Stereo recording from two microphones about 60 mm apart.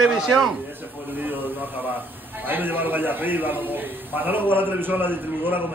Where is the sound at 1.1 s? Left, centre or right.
Right.